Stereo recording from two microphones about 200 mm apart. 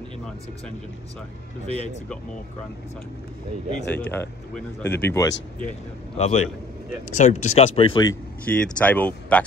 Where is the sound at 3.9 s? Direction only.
10° left (ahead or behind).